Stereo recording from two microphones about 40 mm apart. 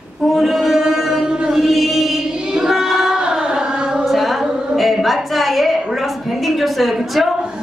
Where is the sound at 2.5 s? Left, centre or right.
Centre.